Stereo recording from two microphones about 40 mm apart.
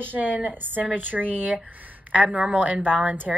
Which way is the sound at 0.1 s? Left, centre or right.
Right.